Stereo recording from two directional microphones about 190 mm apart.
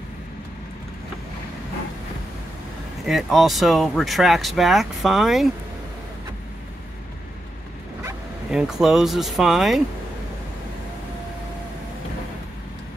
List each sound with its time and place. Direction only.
3.1 s speech: centre (ahead or behind)
8.5 s speech: 5° right (ahead or behind)